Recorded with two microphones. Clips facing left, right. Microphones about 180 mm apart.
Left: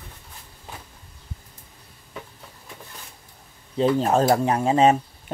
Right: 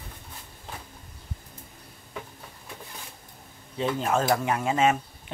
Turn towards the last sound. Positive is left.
turn(degrees=35)  # may be behind; listen again after turning